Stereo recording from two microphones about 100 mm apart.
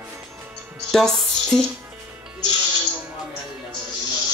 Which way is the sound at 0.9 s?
5° left (ahead or behind).